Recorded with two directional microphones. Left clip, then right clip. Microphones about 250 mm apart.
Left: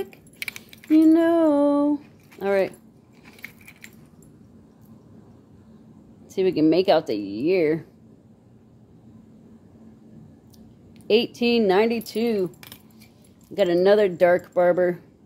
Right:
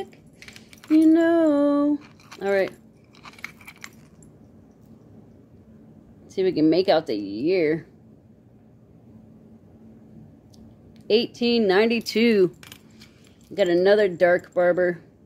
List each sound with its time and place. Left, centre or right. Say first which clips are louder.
0.9 s lullaby: even; centre
2.4 s a woman's voice: left 1 dB; centre
6.3 s a woman's voice: left 1 dB; centre
11.1 s a woman's voice: left 1 dB; centre
12.0 s speech: right 5 dB; right
13.6 s a woman's voice: even; centre